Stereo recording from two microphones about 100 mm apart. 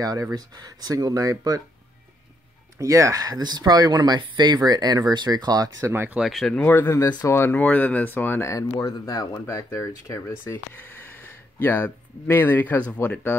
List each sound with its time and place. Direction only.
0.0 s speech: 35° right (ahead or behind)
2.8 s speech: 30° right (ahead or behind)
5.8 s speech: 25° right (ahead or behind)
6.1 s speech: centre (ahead or behind); by 7.0 s 20° left (ahead or behind)
7.0 s speech: 40° left (ahead or behind)
7.2 s speech: 25° left (ahead or behind)